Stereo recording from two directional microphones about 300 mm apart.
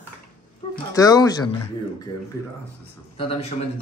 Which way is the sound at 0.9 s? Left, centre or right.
Centre.